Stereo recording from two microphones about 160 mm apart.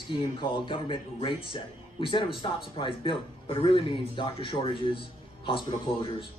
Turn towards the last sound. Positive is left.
turn(degrees=30)  # may be behind; listen again after turning